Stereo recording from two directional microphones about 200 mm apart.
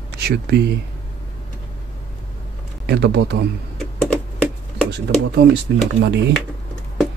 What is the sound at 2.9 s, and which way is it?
Speech, 55° right (ahead or behind).